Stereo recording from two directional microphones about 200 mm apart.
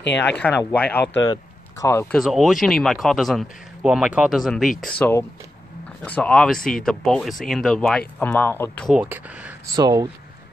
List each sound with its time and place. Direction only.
0.4 s speech: 5° left (ahead or behind)
2.1 s speech: centre (ahead or behind)
8.8 s speech: 5° right (ahead or behind)
9.8 s speech: 20° right (ahead or behind)